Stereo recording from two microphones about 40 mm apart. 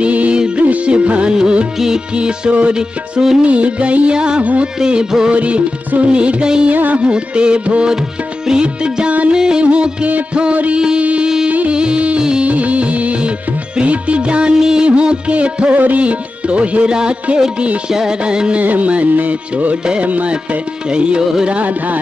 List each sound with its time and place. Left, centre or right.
0.0 s music: right
4.4 s music: right
4.7 s music: centre
5.3 s music: right
6.7 s music: right
7.0 s music: right
12.4 s music: right
14.6 s music: centre
14.9 s music: right
18.6 s music: right
20.9 s music: right